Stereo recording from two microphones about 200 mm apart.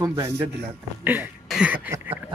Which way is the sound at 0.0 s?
15° right (ahead or behind).